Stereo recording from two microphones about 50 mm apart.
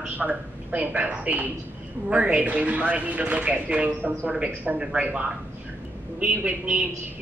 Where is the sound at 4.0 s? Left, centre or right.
Right.